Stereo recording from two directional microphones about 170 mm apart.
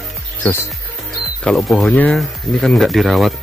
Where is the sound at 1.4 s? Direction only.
Centre (ahead or behind).